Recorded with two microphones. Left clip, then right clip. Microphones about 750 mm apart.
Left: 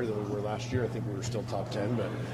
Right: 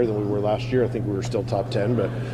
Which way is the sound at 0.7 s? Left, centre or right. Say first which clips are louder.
Right 10 dB; right.